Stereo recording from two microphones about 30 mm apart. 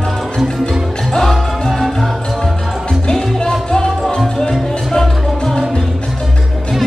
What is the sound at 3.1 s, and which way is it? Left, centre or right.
Music, left.